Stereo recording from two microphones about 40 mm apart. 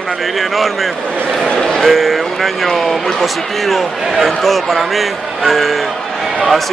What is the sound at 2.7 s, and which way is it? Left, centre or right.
A man's voice, centre.